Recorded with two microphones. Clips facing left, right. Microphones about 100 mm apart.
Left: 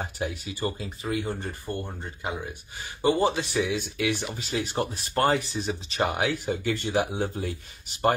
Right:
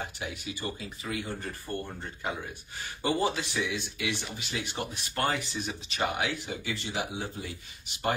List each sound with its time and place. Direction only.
0.0 s a man's voice: 35° left (ahead or behind)
3.6 s speech: 50° left (ahead or behind)